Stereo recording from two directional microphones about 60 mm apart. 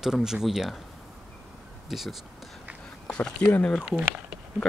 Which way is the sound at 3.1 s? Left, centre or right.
Centre.